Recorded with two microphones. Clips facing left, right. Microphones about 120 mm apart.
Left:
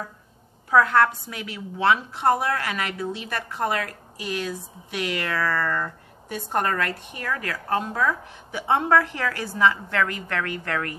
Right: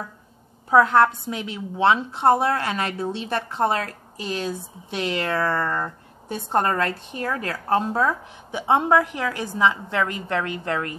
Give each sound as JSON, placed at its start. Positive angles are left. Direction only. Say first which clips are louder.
{"t": 0.7, "sound": "a woman's voice", "louder": "right 2 dB", "side_deg": -25}